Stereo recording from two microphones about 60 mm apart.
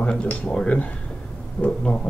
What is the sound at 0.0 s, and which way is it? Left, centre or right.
Speech, left.